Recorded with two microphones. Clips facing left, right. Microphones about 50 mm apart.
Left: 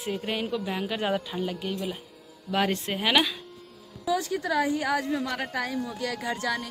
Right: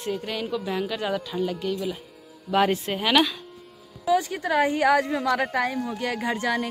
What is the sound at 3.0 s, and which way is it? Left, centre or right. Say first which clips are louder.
Speech: right 3 dB; centre.